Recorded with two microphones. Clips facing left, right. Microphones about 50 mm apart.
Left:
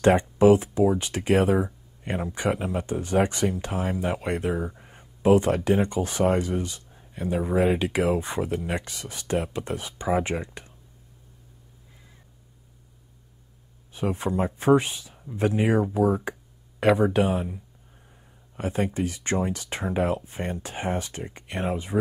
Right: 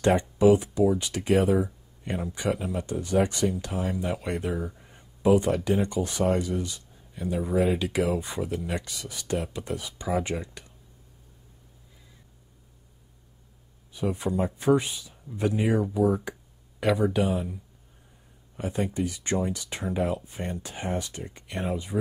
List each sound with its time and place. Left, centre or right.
0.0 s speech: left
0.4 s speech: left
1.0 s speech: centre
13.9 s speech: left
18.8 s speech: left